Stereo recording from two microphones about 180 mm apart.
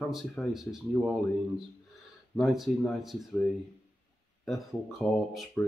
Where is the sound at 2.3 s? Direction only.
Centre (ahead or behind).